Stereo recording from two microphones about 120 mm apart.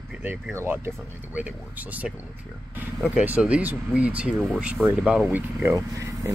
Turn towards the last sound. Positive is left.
turn(degrees=-25)  # may be behind; listen again after turning